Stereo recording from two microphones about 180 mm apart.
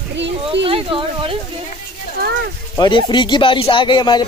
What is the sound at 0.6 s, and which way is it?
Speech, 30° right (ahead or behind).